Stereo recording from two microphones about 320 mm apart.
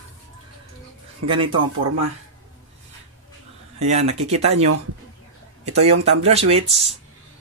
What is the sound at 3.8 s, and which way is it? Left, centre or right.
Speech, right.